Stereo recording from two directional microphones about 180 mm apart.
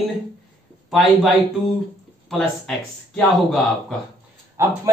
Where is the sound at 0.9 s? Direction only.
Centre (ahead or behind).